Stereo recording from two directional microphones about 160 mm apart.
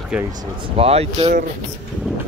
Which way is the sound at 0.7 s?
40° right (ahead or behind).